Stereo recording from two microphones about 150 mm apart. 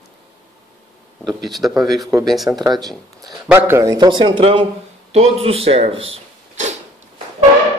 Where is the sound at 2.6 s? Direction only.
25° right (ahead or behind).